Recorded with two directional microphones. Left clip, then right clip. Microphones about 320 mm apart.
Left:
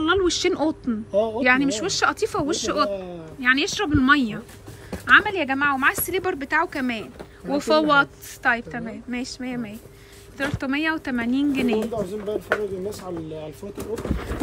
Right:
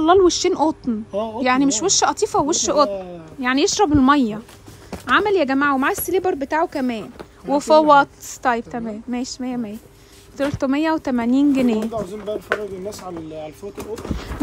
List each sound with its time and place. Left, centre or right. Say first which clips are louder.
0.0 s a woman's voice: right 6 dB; centre
11.8 s speech: right 1 dB; centre